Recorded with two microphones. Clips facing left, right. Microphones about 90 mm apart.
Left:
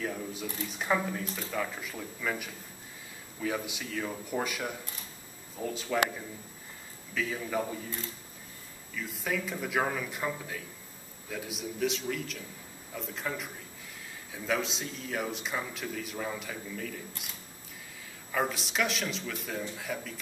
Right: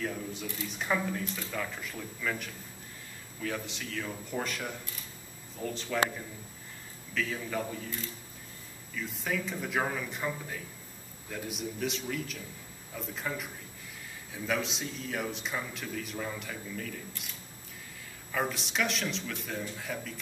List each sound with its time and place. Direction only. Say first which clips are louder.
0.0 s a man's voice: left 1 dB; 5° left (ahead or behind)
8.9 s a man's voice: even; centre (ahead or behind)
18.3 s a man's voice: left 1 dB; centre (ahead or behind)